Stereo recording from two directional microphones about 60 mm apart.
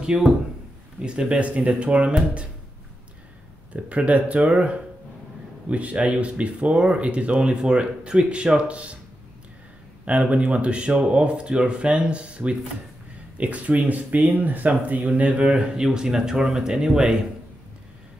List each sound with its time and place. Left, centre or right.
0.0 s speech: centre
3.7 s speech: right
10.0 s speech: right